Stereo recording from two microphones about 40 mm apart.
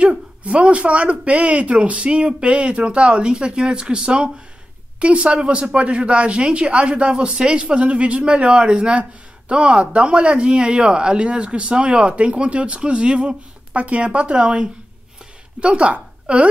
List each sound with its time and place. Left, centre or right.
0.0 s a woman's voice: right